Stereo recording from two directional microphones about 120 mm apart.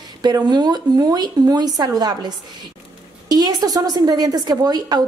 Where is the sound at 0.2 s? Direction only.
35° right (ahead or behind).